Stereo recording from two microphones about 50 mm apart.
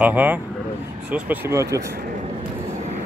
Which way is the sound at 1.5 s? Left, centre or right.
Right.